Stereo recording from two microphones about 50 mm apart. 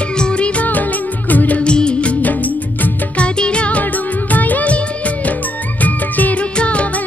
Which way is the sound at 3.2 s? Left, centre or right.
Centre.